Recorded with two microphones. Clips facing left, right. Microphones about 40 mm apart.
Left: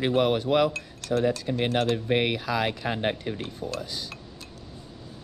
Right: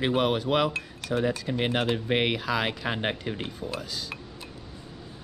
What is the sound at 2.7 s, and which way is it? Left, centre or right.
Speech, right.